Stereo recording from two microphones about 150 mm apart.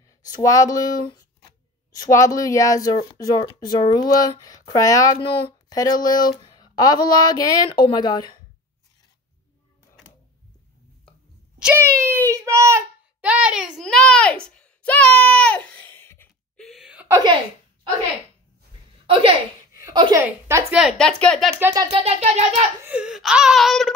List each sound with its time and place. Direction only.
0.2 s speech: 20° left (ahead or behind)
11.6 s speech: 15° right (ahead or behind)
12.3 s child singing: 20° right (ahead or behind)
13.2 s a child's voice: 10° right (ahead or behind)
14.4 s a sound: 5° left (ahead or behind)
16.6 s a sound: 5° right (ahead or behind)
17.1 s speech: 30° right (ahead or behind)
19.8 s a sound: 25° right (ahead or behind)
20.2 s speech: 15° right (ahead or behind)
20.7 s laughter: centre (ahead or behind)
22.0 s music: 45° right (ahead or behind)
22.8 s laughter: 5° right (ahead or behind)